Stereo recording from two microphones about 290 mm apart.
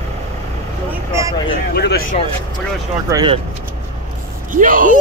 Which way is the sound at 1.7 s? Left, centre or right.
Left.